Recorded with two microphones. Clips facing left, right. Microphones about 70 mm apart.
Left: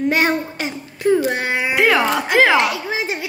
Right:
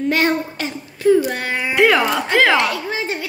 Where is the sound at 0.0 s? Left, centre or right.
Centre.